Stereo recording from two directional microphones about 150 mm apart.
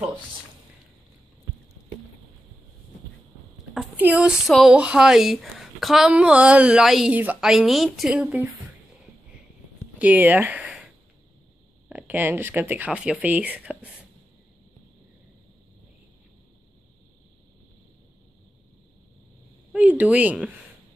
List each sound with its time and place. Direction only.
3.9 s speech: 10° right (ahead or behind)
9.9 s speech: 10° right (ahead or behind)
11.9 s speech: 10° right (ahead or behind)
19.7 s speech: centre (ahead or behind)